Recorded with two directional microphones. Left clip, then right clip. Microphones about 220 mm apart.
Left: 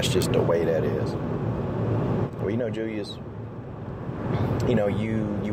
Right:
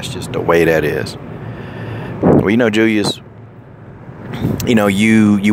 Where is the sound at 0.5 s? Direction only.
40° right (ahead or behind).